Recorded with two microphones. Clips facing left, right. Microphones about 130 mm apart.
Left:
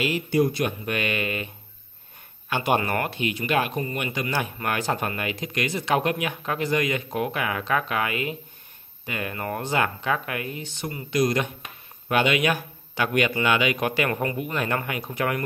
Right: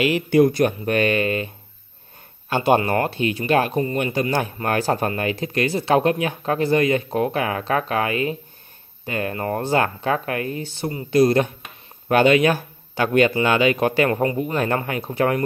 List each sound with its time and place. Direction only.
0.0 s speech: 65° right (ahead or behind)
0.5 s speech: 40° right (ahead or behind)
2.5 s speech: 30° right (ahead or behind)